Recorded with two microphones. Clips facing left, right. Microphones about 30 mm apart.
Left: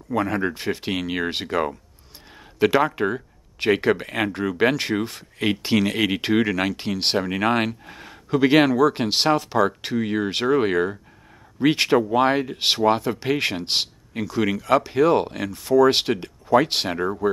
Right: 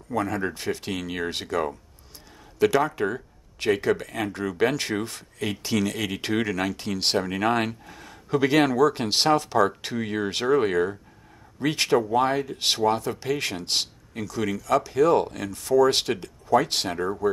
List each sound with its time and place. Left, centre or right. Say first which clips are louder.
0.1 s speech: left 3 dB; left
3.7 s speech: left 4 dB; left
4.3 s speech: left 2 dB; left
5.4 s speech: left 5 dB; left